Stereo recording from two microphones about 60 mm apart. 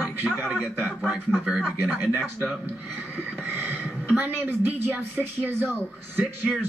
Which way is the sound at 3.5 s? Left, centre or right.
Right.